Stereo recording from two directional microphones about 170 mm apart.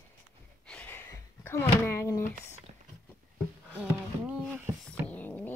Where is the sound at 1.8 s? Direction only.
15° left (ahead or behind).